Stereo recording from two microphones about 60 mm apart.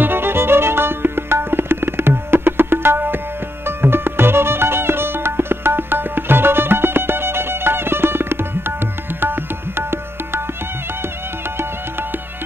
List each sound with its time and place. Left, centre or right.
0.0 s tabla: right
3.6 s music: right